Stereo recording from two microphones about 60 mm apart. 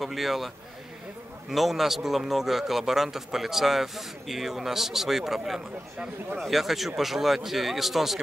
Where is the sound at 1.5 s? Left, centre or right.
Centre.